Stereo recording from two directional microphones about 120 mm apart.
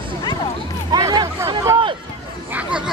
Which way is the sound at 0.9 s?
35° right (ahead or behind).